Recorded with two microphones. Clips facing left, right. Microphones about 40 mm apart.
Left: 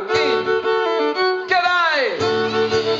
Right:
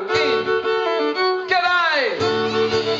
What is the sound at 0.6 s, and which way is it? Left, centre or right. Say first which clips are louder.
Violin: left 2 dB; centre.